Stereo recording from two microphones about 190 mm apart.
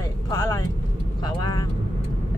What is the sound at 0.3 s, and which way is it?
Vehicle, 15° left (ahead or behind).